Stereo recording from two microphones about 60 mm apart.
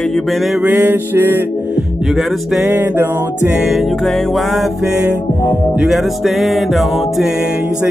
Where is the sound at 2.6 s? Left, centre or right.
Right.